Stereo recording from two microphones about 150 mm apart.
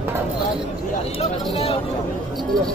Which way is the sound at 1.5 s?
40° left (ahead or behind).